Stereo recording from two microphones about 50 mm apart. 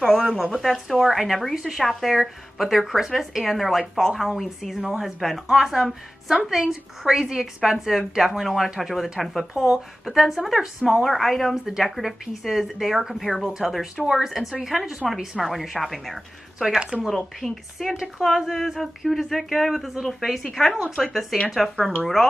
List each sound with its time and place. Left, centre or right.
0.0 s speech: centre
16.8 s speech: right
17.1 s speech: centre